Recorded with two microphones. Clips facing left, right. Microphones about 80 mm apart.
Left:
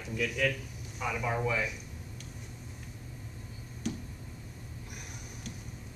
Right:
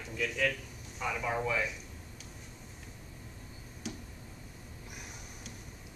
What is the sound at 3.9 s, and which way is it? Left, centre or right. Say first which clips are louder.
Tick-tock: left 6 dB; centre.